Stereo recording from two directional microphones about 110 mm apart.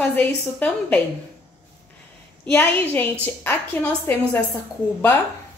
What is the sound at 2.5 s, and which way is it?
Speech, 20° left (ahead or behind).